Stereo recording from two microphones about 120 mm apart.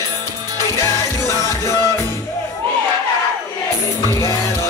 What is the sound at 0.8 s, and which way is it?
Music, 25° left (ahead or behind).